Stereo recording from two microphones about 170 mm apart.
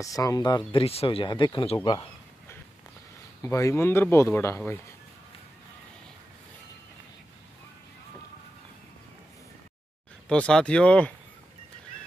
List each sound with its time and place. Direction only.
0.0 s speech: 20° left (ahead or behind)
3.4 s speech: 15° left (ahead or behind)
10.2 s speech: 5° left (ahead or behind)